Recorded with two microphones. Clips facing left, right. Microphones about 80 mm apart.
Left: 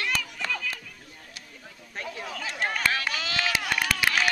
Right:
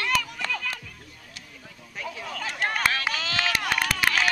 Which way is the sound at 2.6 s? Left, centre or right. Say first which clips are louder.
Right 2 dB; centre.